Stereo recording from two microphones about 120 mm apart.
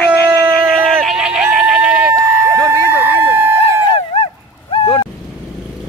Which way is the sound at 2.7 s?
20° left (ahead or behind).